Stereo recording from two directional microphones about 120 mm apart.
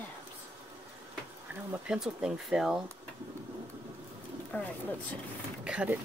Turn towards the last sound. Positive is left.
turn(degrees=-10)  # may be behind; listen again after turning